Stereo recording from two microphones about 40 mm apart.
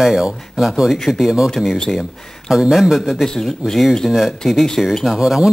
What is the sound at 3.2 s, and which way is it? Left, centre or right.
Speech, centre.